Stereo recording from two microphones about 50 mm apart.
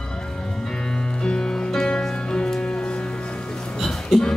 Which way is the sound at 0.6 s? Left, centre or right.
Centre.